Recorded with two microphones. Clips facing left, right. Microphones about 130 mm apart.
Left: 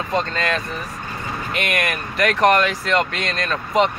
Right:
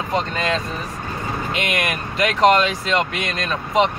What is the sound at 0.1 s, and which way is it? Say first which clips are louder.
Speech: even; 15° right (ahead or behind).